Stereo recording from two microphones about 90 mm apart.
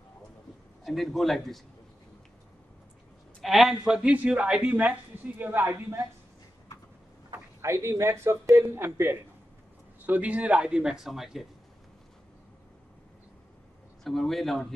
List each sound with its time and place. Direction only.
0.8 s a man's voice: centre (ahead or behind)
3.4 s a woman's voice: centre (ahead or behind); by 6.0 s 25° right (ahead or behind)
7.6 s a woman's voice: 30° right (ahead or behind); by 11.4 s 5° right (ahead or behind)
14.0 s a man's voice: 5° left (ahead or behind)